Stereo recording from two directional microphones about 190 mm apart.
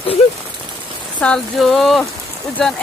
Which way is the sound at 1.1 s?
5° left (ahead or behind).